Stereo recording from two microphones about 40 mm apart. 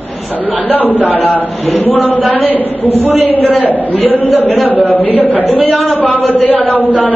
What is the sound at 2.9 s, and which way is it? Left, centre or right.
Speech, right.